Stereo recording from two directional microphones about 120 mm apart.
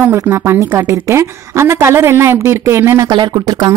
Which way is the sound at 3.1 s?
35° right (ahead or behind).